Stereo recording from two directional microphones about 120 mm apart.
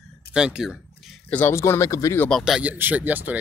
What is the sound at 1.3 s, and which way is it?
Speech, 20° left (ahead or behind).